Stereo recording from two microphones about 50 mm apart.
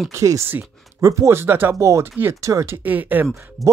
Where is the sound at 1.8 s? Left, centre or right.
Right.